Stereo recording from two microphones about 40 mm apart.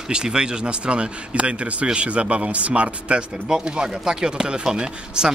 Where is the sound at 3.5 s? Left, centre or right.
Centre.